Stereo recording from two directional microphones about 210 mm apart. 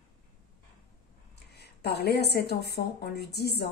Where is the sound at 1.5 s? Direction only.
50° left (ahead or behind).